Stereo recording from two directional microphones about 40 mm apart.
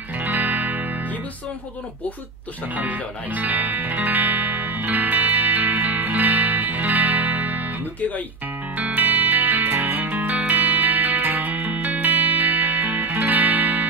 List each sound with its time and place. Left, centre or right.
0.2 s music: right
2.7 s music: right
8.7 s music: right